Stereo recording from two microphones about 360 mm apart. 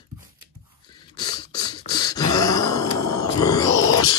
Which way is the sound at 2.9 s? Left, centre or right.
Left.